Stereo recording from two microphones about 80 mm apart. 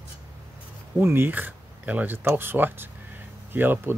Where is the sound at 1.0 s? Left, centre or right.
Right.